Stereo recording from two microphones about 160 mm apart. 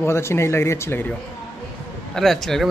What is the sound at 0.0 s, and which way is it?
Speech, 15° left (ahead or behind).